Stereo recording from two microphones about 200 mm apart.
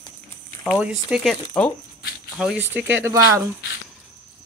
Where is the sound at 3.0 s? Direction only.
15° right (ahead or behind).